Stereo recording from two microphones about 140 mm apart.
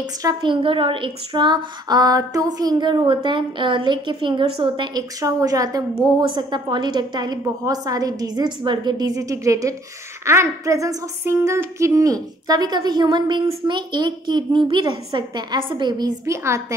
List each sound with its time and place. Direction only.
0.0 s a woman's voice: 25° right (ahead or behind)
16.3 s a woman's voice: 20° right (ahead or behind)